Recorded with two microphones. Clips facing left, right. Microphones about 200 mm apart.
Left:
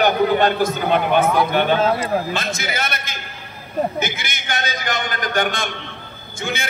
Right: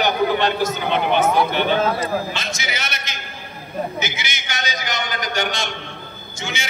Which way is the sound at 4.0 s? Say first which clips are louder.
Left 3 dB; 55° left (ahead or behind).